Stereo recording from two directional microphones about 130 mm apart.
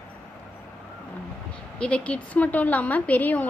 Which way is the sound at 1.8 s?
10° left (ahead or behind).